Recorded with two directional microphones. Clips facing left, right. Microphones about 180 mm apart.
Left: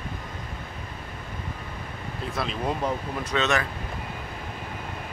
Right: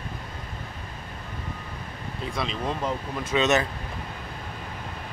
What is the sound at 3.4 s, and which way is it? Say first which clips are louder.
Speech: right 3 dB; 20° right (ahead or behind).